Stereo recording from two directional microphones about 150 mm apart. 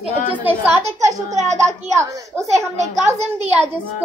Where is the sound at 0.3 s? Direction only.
10° right (ahead or behind).